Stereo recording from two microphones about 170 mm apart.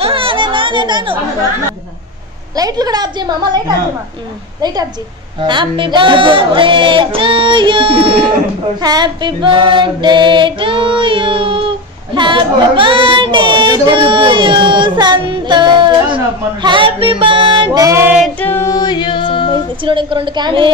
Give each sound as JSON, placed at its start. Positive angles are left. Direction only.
{"t": 0.0, "sound": "a sound", "side_deg": -30}
{"t": 2.5, "sound": "music", "side_deg": -20}
{"t": 8.8, "sound": "female singing", "side_deg": -25}
{"t": 16.6, "sound": "music", "side_deg": -30}
{"t": 18.2, "sound": "female singing", "side_deg": 10}
{"t": 19.8, "sound": "music", "side_deg": -30}